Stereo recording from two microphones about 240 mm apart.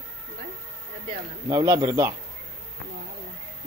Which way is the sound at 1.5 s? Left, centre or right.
Centre.